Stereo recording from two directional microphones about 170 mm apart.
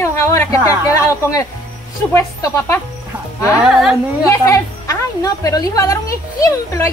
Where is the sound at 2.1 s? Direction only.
15° left (ahead or behind).